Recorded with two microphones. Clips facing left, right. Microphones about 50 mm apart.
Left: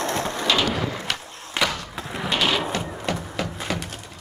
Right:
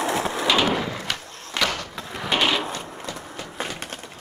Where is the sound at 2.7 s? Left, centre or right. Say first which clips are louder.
Left 5 dB; left.